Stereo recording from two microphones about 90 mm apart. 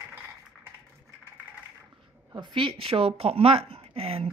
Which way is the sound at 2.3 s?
65° right (ahead or behind).